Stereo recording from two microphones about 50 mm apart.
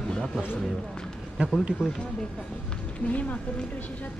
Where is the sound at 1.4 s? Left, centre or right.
Right.